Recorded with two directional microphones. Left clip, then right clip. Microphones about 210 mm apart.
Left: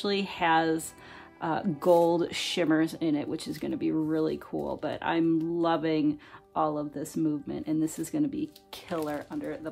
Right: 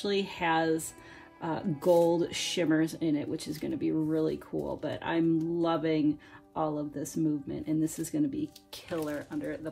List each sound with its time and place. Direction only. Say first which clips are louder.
0.0 s speech: left 2 dB; 25° left (ahead or behind)